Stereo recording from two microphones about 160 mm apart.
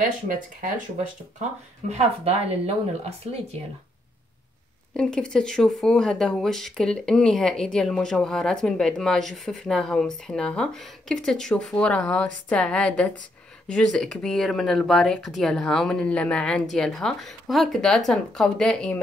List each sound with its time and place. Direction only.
1.9 s a woman's voice: 40° right (ahead or behind)
4.9 s a woman's voice: 5° left (ahead or behind)